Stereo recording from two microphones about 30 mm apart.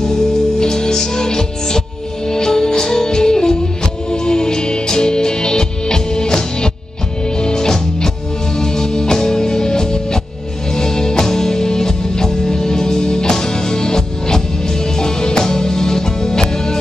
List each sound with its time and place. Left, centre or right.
0.0 s music: left